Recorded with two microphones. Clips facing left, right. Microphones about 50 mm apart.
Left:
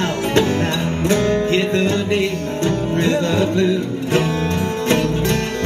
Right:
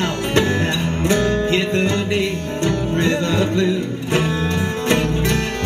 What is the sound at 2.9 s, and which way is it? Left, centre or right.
Music, right.